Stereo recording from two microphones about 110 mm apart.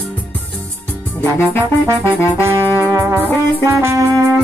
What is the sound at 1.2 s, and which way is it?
Music, 20° left (ahead or behind).